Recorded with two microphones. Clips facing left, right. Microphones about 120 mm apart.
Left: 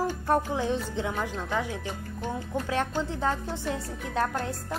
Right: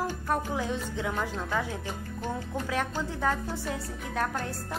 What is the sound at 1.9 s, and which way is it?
Music, centre (ahead or behind).